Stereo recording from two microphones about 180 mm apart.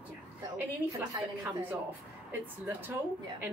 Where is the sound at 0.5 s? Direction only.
15° right (ahead or behind).